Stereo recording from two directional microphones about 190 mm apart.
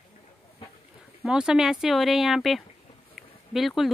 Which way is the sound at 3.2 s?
Centre (ahead or behind).